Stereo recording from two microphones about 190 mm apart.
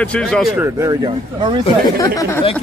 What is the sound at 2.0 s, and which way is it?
Speech, 15° left (ahead or behind).